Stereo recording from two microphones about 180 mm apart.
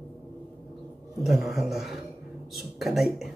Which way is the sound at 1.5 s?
Centre (ahead or behind).